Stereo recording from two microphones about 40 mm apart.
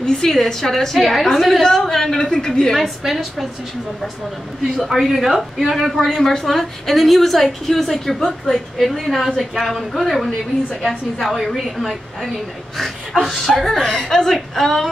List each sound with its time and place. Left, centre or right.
0.0 s a woman's voice: centre
3.0 s a woman's voice: centre
4.7 s a woman's voice: centre
8.7 s a woman's voice: centre